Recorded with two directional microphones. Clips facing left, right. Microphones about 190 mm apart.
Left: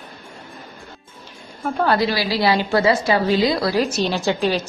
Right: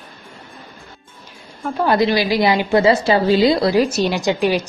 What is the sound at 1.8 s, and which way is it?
A woman's voice, 20° right (ahead or behind).